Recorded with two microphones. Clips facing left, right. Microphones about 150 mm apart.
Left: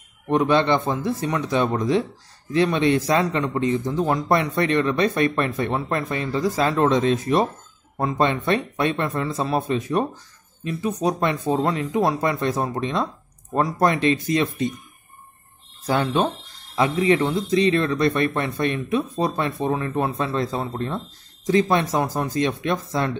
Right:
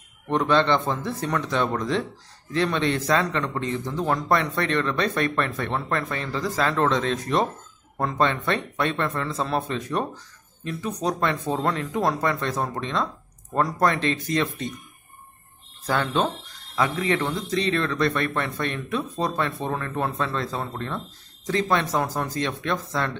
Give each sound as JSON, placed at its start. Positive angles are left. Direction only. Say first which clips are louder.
{"t": 0.3, "sound": "speech", "louder": "left 2 dB", "side_deg": 10}
{"t": 13.0, "sound": "a sound", "louder": "left 2 dB", "side_deg": 20}
{"t": 13.7, "sound": "speech", "louder": "left 6 dB", "side_deg": 15}
{"t": 15.9, "sound": "speech", "louder": "left 3 dB", "side_deg": 15}